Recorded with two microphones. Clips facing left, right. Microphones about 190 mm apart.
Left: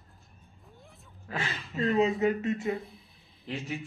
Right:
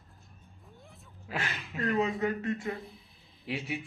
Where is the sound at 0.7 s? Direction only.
Centre (ahead or behind).